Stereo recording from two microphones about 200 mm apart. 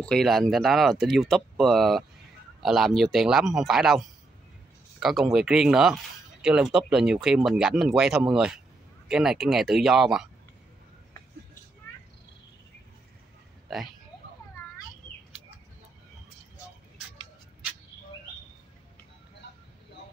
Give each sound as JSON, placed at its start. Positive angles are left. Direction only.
{"t": 0.0, "sound": "speech", "side_deg": 0}
{"t": 5.0, "sound": "speech", "side_deg": 0}
{"t": 19.4, "sound": "a sound", "side_deg": 60}